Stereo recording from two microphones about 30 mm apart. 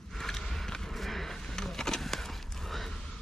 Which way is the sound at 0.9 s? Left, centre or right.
Centre.